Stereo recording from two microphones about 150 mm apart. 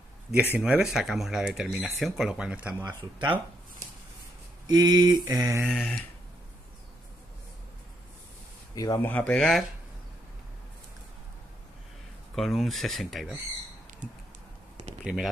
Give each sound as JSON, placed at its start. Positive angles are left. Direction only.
{"t": 0.6, "sound": "speech", "side_deg": -5}
{"t": 2.8, "sound": "speech", "side_deg": -25}
{"t": 4.6, "sound": "speech", "side_deg": -25}
{"t": 5.7, "sound": "speech", "side_deg": 5}
{"t": 8.7, "sound": "speech", "side_deg": 25}
{"t": 9.0, "sound": "speech", "side_deg": 10}
{"t": 12.4, "sound": "speech", "side_deg": 0}